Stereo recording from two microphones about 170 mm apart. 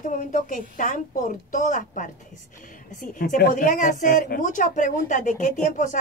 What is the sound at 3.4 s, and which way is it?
Speech, 55° left (ahead or behind).